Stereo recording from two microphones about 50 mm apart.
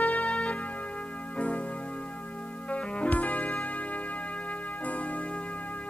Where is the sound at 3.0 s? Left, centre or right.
Left.